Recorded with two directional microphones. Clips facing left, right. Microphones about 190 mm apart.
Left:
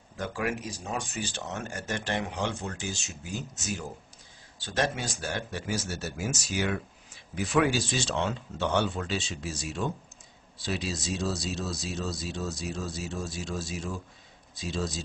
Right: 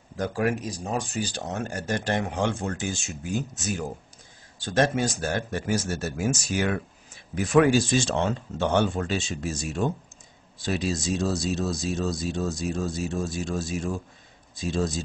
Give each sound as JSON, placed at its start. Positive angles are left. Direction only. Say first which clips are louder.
{"t": 0.2, "sound": "speech", "louder": "right 6 dB", "side_deg": -40}